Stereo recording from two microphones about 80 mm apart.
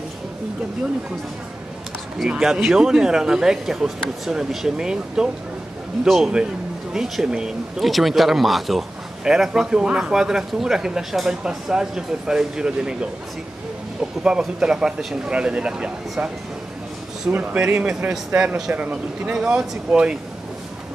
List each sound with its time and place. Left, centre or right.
2.2 s a man's voice: centre
14.2 s speech: centre
17.3 s speech: centre